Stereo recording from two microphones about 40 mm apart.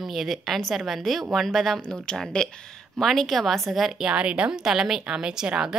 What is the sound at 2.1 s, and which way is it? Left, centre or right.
Speech, left.